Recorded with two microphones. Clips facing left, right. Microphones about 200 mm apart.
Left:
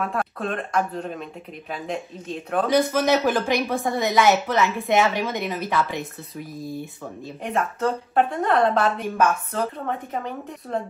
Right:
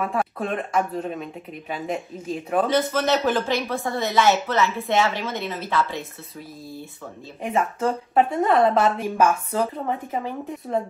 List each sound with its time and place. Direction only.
0.0 s speech: 5° right (ahead or behind)
2.7 s a woman's voice: 10° left (ahead or behind)
7.4 s speech: centre (ahead or behind)